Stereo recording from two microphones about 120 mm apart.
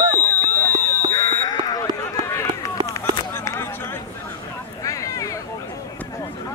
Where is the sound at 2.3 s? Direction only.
20° left (ahead or behind).